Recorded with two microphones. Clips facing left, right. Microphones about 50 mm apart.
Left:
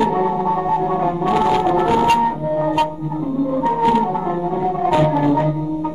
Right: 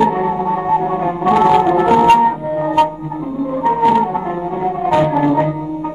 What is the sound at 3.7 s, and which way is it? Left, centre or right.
Music, centre.